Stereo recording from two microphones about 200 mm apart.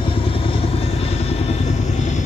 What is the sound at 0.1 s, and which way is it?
Vehicle, 30° left (ahead or behind).